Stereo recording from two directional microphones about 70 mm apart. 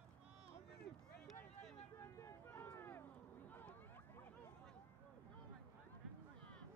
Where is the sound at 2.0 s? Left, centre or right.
Left.